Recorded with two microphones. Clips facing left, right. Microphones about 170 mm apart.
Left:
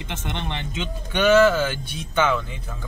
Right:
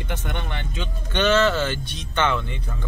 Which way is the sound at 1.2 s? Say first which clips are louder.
Left 3 dB; 10° left (ahead or behind).